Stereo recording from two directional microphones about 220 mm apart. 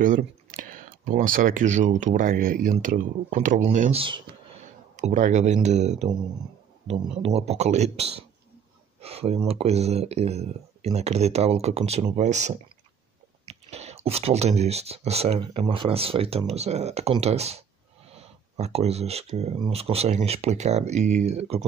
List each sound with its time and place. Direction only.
0.0 s speech: 35° right (ahead or behind)